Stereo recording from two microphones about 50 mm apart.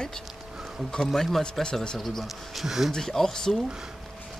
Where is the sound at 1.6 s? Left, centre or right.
Centre.